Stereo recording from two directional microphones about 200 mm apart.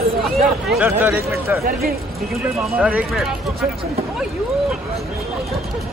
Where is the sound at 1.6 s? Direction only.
50° right (ahead or behind).